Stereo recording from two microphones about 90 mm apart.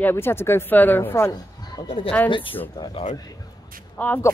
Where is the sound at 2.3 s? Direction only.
75° left (ahead or behind).